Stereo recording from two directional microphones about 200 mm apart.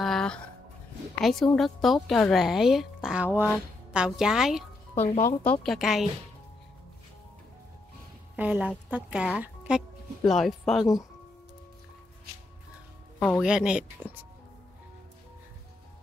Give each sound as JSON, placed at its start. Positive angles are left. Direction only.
{"t": 0.0, "sound": "a sound", "side_deg": 0}
{"t": 1.2, "sound": "speech", "side_deg": 0}
{"t": 5.0, "sound": "speech", "side_deg": 35}
{"t": 5.4, "sound": "speech", "side_deg": 5}
{"t": 8.4, "sound": "speech", "side_deg": -5}
{"t": 13.4, "sound": "speech", "side_deg": -5}